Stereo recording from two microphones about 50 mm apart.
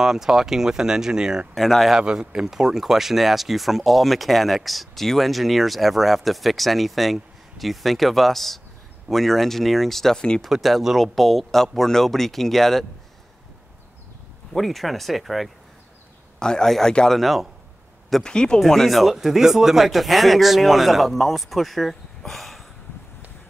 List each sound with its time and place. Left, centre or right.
0.0 s speech: centre
1.5 s speech: centre
2.0 s speech: centre
14.5 s speech: centre
16.3 s a man's voice: centre
17.1 s speech: centre
18.2 s a man's voice: centre
18.6 s speech: centre